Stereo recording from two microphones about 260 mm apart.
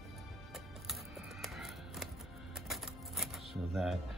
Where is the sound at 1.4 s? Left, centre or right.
Centre.